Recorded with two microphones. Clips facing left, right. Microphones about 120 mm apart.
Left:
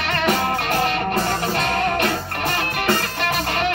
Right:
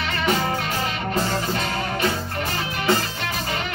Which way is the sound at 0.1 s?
60° left (ahead or behind).